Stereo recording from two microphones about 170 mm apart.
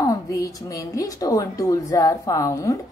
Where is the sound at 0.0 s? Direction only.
20° left (ahead or behind).